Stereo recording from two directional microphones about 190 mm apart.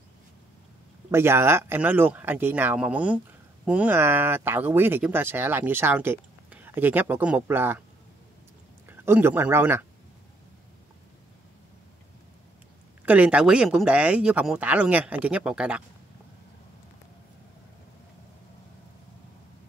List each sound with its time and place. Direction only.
1.1 s speech: 15° right (ahead or behind)
8.8 s speech: 10° right (ahead or behind)
13.0 s speech: 5° right (ahead or behind)